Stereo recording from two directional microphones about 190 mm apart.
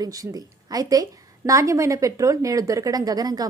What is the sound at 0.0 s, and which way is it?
A woman's voice, 20° right (ahead or behind).